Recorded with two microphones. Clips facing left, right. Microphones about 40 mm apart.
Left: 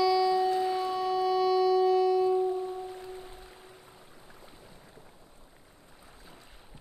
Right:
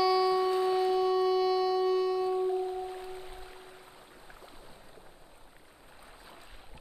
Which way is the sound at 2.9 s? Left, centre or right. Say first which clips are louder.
Right 1 dB; centre.